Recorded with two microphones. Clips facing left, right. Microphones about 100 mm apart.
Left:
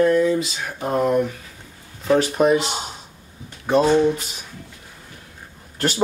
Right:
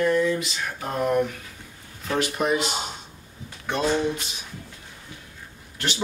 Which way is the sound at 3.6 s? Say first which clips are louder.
Left 8 dB; 35° left (ahead or behind).